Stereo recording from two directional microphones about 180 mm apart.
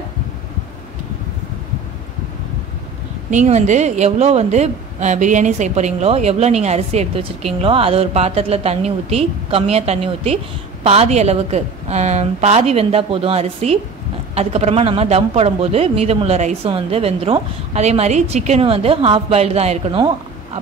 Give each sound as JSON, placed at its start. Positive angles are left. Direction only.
{"t": 3.3, "sound": "speech", "side_deg": -40}